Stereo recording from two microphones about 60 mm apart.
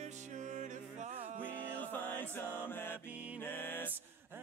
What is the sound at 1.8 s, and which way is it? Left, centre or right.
Music, left.